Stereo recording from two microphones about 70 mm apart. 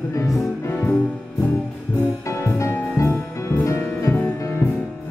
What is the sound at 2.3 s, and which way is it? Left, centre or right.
Music, left.